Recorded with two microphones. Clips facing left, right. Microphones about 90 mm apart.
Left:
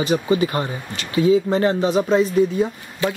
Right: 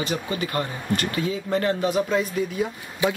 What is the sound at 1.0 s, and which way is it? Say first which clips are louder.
Speech: left 12 dB; 55° right (ahead or behind).